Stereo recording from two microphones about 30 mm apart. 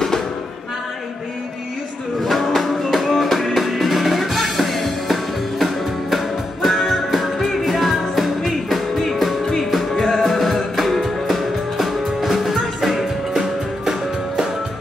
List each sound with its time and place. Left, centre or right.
2.2 s music: centre
11.2 s music: centre
13.3 s music: centre